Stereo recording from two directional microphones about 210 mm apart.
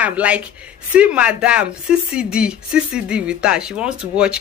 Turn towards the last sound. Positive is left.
turn(degrees=-5)  # may be behind; listen again after turning